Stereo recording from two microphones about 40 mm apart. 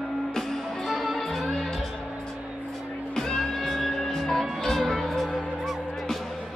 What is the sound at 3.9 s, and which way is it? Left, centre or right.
Music, centre.